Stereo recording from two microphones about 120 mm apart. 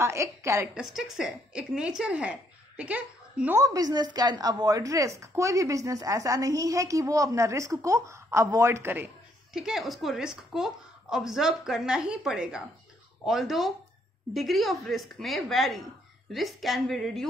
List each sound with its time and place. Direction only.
0.0 s speech: 25° right (ahead or behind)
0.7 s a woman's voice: 5° right (ahead or behind)
3.5 s speech: 30° right (ahead or behind)
9.5 s a woman's voice: 5° right (ahead or behind)